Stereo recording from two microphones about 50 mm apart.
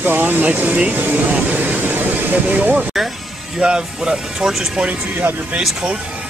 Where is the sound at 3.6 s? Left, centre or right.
Centre.